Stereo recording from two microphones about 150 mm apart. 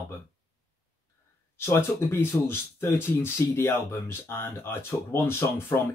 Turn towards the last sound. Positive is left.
turn(degrees=15)  # may be behind; listen again after turning